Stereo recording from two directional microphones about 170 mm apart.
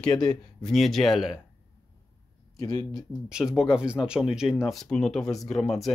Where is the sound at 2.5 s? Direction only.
20° left (ahead or behind).